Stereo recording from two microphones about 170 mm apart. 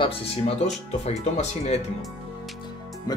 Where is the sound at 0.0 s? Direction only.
35° left (ahead or behind).